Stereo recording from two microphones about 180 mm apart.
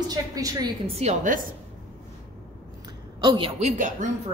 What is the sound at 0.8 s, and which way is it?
Speech, 35° right (ahead or behind).